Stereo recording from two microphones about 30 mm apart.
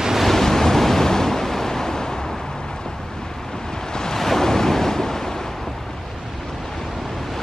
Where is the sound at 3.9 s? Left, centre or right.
Left.